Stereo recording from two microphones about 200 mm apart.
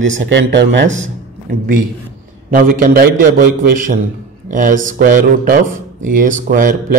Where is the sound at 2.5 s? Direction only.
45° right (ahead or behind).